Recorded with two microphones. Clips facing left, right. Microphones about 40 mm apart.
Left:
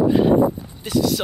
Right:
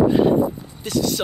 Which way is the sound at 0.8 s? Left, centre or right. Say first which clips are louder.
Left 2 dB; centre.